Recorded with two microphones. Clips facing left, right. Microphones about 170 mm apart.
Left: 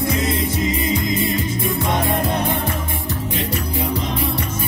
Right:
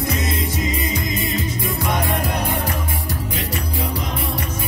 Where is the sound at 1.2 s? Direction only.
25° left (ahead or behind).